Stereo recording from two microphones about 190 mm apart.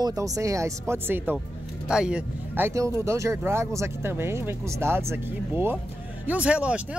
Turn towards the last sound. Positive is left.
turn(degrees=-5)  # may be behind; listen again after turning